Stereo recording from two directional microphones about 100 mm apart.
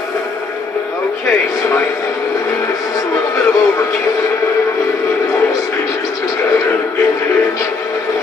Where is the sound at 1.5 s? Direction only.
30° left (ahead or behind).